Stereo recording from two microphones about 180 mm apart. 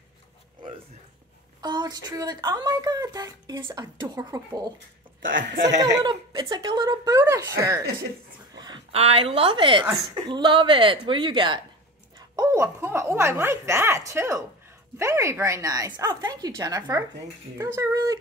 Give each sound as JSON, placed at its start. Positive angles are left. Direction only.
{"t": 1.6, "sound": "speech", "side_deg": -25}
{"t": 5.2, "sound": "speech", "side_deg": -50}
{"t": 6.0, "sound": "a woman's voice", "side_deg": -25}